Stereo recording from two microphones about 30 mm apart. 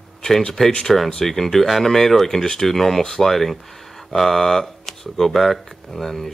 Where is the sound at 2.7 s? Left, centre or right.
Centre.